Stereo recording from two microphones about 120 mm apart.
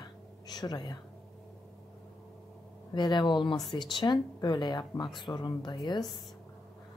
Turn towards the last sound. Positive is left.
turn(degrees=40)  # may be behind; listen again after turning